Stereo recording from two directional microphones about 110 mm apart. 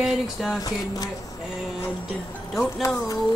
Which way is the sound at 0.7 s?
35° left (ahead or behind).